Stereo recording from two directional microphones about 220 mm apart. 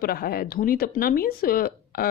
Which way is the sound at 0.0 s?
45° left (ahead or behind).